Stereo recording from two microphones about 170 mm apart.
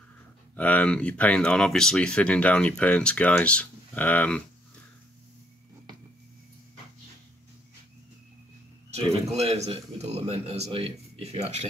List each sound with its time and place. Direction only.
0.6 s speech: 10° left (ahead or behind)
9.3 s a man's voice: 40° right (ahead or behind)